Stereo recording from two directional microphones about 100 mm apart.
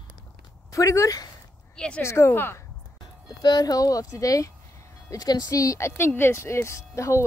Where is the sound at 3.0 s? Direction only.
45° left (ahead or behind).